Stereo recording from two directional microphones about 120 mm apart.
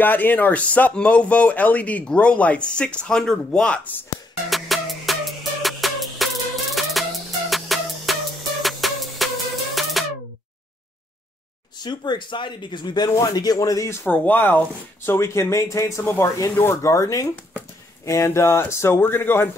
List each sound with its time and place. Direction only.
0.0 s speech: 15° left (ahead or behind)
4.5 s music: centre (ahead or behind)
10.0 s a sound: centre (ahead or behind)
11.8 s speech: 35° left (ahead or behind)
14.0 s speech: 15° left (ahead or behind)